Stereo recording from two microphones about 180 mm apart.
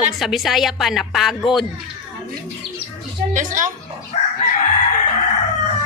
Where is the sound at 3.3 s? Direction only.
45° right (ahead or behind).